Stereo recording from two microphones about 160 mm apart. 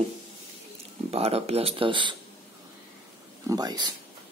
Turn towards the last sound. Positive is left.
turn(degrees=-25)  # may be behind; listen again after turning